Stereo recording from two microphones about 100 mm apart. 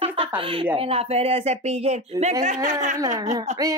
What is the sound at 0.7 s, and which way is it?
Speech, 75° right (ahead or behind).